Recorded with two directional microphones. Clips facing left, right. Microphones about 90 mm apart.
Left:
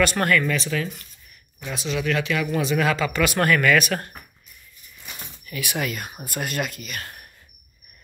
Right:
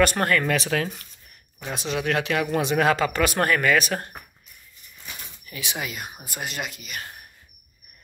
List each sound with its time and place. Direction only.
0.2 s speech: 20° right (ahead or behind)
0.5 s speech: 60° right (ahead or behind); by 4.1 s 25° right (ahead or behind)
5.5 s speech: 20° right (ahead or behind)